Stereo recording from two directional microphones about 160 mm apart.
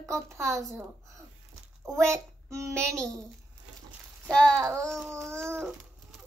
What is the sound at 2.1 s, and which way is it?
Child singing, 20° right (ahead or behind).